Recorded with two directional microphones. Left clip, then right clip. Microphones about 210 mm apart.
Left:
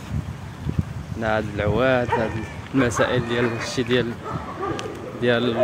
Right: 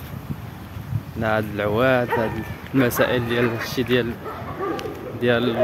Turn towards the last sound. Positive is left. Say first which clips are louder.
# even
turn(degrees=-5)  # may be behind; listen again after turning